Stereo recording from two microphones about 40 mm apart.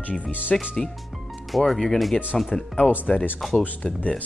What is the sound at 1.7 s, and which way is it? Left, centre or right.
Speech, centre.